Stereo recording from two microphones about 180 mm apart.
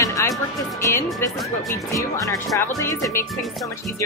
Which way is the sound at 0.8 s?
15° left (ahead or behind).